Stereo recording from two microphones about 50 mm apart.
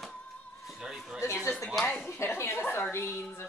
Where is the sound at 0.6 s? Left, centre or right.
Centre.